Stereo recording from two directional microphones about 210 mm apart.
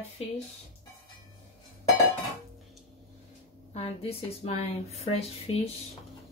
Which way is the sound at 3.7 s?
30° left (ahead or behind).